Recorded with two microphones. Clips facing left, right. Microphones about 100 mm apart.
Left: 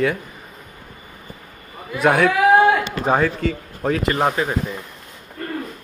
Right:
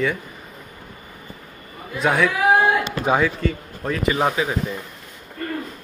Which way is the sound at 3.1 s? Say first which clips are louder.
Left 1 dB; 10° right (ahead or behind).